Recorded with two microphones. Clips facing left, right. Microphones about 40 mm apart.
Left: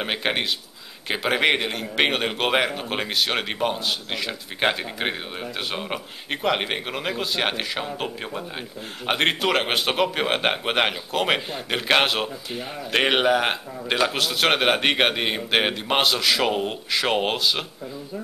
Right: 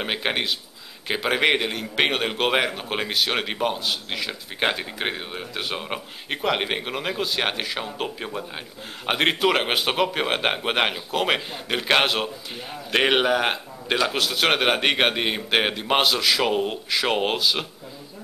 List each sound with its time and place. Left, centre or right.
0.0 s speech: centre